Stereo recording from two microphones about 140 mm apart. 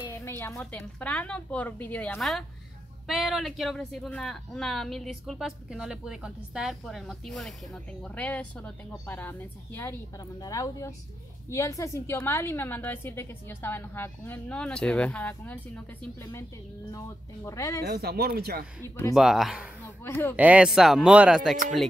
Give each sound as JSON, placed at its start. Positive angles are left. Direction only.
{"t": 0.1, "sound": "a sound", "side_deg": 20}
{"t": 0.9, "sound": "a woman's voice", "side_deg": 10}
{"t": 10.1, "sound": "a woman's voice", "side_deg": 25}
{"t": 16.9, "sound": "speech", "side_deg": 20}
{"t": 18.1, "sound": "speech", "side_deg": -90}
{"t": 19.1, "sound": "speech", "side_deg": 0}
{"t": 20.0, "sound": "a woman's voice", "side_deg": 20}
{"t": 20.3, "sound": "speech", "side_deg": -10}